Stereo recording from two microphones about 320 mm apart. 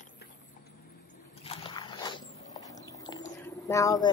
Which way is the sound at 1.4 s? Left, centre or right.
Centre.